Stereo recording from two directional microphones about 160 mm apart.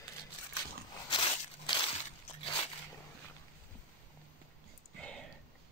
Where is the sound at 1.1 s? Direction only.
30° left (ahead or behind).